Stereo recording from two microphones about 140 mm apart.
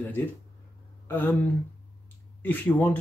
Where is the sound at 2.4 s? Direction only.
15° left (ahead or behind).